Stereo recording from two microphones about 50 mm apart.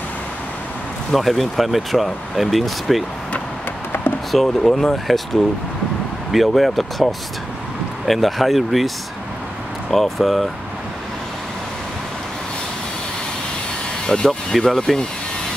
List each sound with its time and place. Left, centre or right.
1.1 s speech: centre
4.3 s speech: centre
6.3 s speech: centre
14.0 s speech: centre